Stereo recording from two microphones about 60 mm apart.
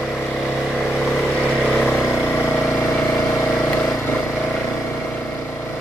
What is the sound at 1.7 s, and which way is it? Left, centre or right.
Vehicle, left.